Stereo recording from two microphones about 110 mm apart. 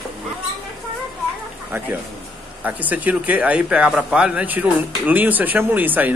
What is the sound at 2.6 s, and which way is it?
Speech, 15° right (ahead or behind).